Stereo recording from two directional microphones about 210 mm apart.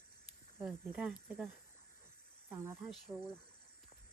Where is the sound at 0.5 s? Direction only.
5° right (ahead or behind).